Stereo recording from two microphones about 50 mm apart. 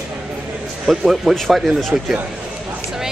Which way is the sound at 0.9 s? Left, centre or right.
Centre.